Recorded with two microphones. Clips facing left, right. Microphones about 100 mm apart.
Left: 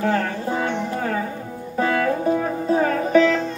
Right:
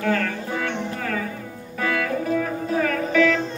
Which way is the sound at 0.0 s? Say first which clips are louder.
Left 2 dB; 25° left (ahead or behind).